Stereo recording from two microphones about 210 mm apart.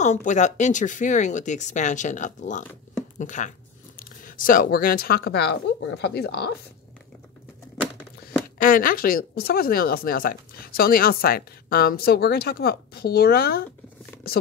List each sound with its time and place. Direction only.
0.0 s speech: 35° left (ahead or behind)
8.5 s speech: 40° left (ahead or behind)